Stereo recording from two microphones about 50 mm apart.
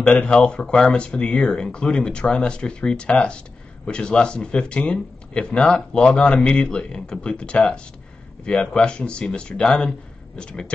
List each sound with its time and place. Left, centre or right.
0.0 s speech: left